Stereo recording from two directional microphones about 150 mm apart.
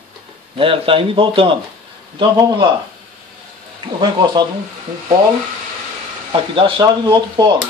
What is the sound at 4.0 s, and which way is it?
Speech, 30° right (ahead or behind).